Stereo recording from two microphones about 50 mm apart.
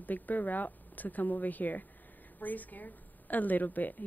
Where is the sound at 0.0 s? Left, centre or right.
Left.